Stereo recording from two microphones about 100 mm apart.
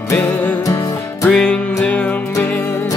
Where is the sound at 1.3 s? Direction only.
5° left (ahead or behind).